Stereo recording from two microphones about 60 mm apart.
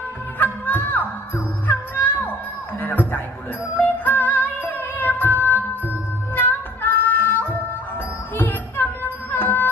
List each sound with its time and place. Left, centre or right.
0.4 s music: left
2.8 s speech: left
3.7 s music: left